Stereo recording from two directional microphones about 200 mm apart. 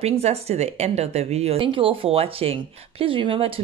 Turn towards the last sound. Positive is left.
turn(degrees=-25)  # may be behind; listen again after turning